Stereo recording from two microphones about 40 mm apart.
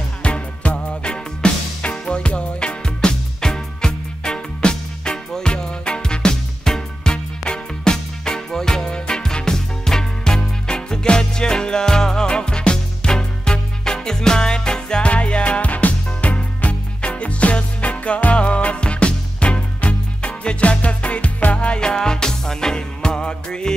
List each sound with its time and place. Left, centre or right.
0.2 s music: left
3.3 s music: centre
15.0 s music: left
21.5 s music: left